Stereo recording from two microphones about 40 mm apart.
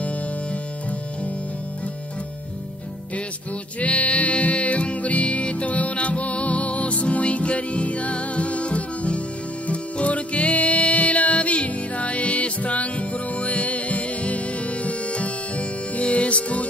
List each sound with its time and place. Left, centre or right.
3.8 s music: left